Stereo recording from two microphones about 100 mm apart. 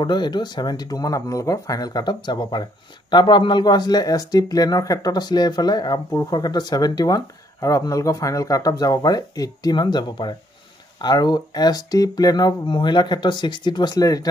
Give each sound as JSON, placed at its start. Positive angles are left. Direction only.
{"t": 0.0, "sound": "speech", "side_deg": 45}